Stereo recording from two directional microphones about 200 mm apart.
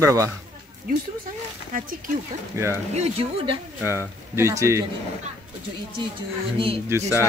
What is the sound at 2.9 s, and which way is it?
Speech, 30° right (ahead or behind).